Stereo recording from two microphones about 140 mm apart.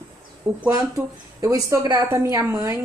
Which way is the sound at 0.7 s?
25° right (ahead or behind).